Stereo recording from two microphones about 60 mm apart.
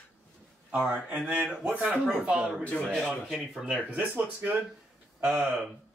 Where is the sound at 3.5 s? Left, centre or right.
Centre.